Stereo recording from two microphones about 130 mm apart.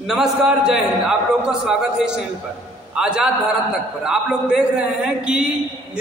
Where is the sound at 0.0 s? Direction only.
5° right (ahead or behind).